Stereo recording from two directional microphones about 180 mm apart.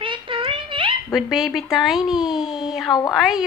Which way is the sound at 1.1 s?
Centre (ahead or behind).